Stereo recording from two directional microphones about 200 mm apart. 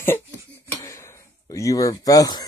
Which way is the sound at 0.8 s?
15° left (ahead or behind).